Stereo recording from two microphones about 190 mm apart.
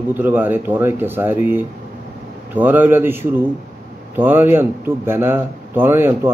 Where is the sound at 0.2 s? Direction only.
10° right (ahead or behind).